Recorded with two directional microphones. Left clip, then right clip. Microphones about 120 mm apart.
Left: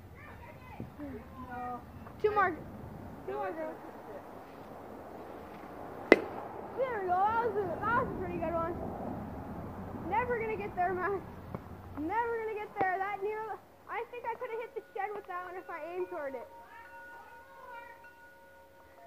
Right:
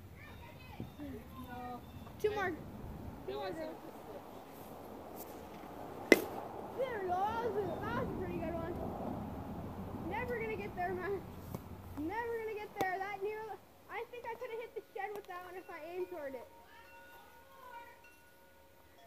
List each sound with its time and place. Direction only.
2.2 s a child's voice: 20° right (ahead or behind)
3.3 s speech: 10° right (ahead or behind)
5.8 s a sound: 25° right (ahead or behind)
12.1 s a child's voice: 30° right (ahead or behind)